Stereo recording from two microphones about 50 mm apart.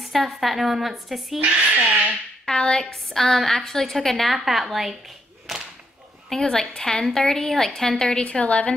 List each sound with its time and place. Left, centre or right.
0.1 s a woman's voice: centre
1.9 s a sound: right
2.4 s a woman's voice: centre
6.3 s a woman's voice: centre
8.3 s a woman's voice: left